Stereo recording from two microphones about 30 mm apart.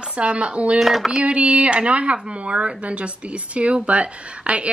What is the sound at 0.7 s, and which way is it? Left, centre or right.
Speech, centre.